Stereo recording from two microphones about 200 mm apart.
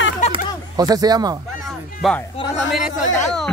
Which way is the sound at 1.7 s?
Centre (ahead or behind).